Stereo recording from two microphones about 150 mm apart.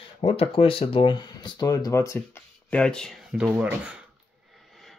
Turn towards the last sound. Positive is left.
turn(degrees=0)  # may be behind; listen again after turning